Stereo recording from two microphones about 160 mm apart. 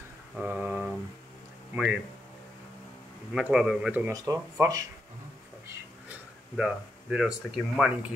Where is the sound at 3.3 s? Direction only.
5° right (ahead or behind).